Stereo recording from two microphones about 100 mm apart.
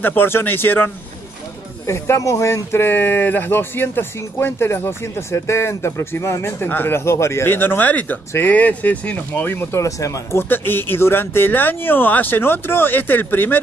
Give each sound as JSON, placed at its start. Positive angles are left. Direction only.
{"t": 0.0, "sound": "speech", "side_deg": 20}
{"t": 10.5, "sound": "speech", "side_deg": 20}